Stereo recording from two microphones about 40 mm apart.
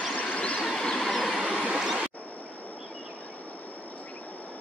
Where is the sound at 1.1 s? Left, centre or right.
Centre.